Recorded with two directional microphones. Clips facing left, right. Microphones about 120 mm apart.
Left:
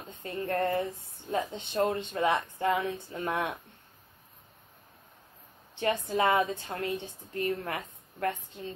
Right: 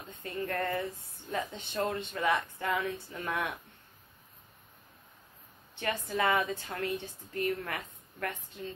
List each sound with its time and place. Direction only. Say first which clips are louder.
0.2 s speech: left 4 dB; 30° left (ahead or behind)
5.8 s a woman's voice: left 4 dB; 30° left (ahead or behind)